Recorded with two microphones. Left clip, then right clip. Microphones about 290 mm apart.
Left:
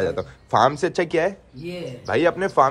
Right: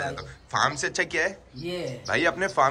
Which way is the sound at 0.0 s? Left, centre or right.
Centre.